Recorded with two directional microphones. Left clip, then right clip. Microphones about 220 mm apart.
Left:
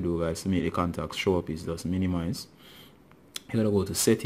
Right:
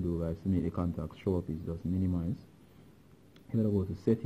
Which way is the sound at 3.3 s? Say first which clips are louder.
Left 7 dB; 20° left (ahead or behind).